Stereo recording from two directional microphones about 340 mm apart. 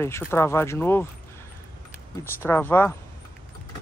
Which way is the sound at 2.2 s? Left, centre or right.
Centre.